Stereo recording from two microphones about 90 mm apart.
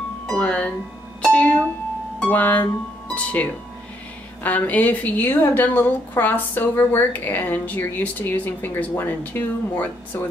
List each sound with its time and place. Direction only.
0.3 s a woman's voice: 15° left (ahead or behind)